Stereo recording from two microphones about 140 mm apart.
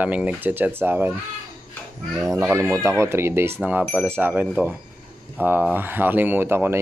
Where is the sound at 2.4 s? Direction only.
15° right (ahead or behind).